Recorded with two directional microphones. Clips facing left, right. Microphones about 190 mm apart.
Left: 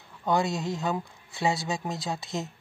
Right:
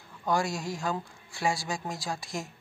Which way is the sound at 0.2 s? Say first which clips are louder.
Left 3 dB; 20° left (ahead or behind).